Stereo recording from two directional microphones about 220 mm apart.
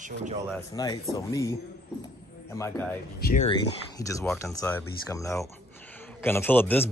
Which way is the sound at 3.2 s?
35° left (ahead or behind).